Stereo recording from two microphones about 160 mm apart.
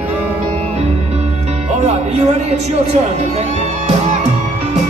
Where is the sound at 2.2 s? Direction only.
40° right (ahead or behind).